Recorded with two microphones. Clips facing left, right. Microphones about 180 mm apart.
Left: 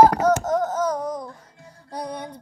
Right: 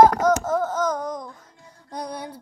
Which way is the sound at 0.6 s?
30° left (ahead or behind).